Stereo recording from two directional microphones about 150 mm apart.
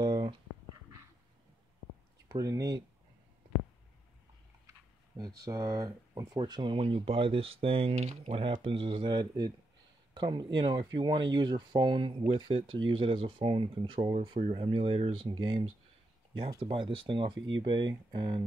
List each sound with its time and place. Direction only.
0.0 s a sound: 30° right (ahead or behind)
2.2 s speech: 25° right (ahead or behind)
4.6 s speech: 25° right (ahead or behind); by 8.4 s 50° right (ahead or behind)
8.6 s speech: 35° right (ahead or behind)